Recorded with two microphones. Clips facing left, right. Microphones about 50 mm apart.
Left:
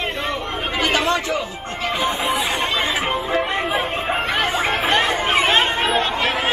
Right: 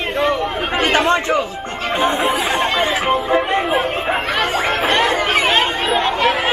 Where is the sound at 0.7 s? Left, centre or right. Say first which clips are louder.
Right 4 dB; right.